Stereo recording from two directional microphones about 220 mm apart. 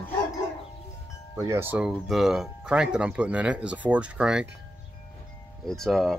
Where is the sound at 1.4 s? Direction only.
10° right (ahead or behind).